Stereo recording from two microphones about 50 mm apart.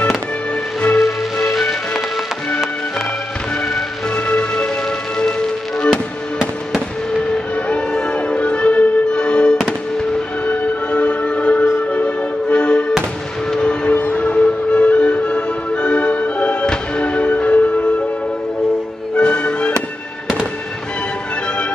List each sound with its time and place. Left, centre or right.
0.9 s music: centre
4.1 s music: left
7.2 s music: centre
9.7 s fireworks: centre
10.5 s music: left
13.5 s a sound: centre
13.9 s music: left
19.1 s music: centre